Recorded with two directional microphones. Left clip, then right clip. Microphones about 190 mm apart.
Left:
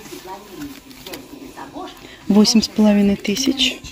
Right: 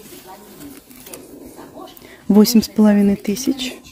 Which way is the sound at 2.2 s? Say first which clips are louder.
Right 1 dB; 25° right (ahead or behind).